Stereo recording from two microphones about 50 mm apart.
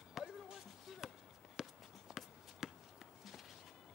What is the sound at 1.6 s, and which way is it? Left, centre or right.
Walk, centre.